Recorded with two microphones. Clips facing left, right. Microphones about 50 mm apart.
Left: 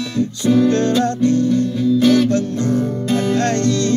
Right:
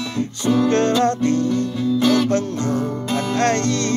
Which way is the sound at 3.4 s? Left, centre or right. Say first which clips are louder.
Left 1 dB; right.